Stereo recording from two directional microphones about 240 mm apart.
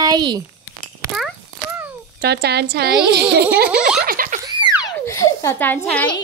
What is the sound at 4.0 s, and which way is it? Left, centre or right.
Giggle, right.